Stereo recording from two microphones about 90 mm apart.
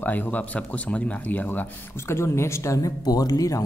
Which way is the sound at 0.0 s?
20° left (ahead or behind).